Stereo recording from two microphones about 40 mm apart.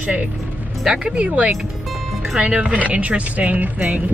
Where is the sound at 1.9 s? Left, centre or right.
Centre.